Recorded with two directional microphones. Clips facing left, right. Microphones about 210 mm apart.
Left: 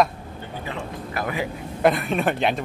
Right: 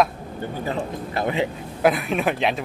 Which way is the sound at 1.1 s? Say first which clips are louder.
Right 4 dB; 25° right (ahead or behind).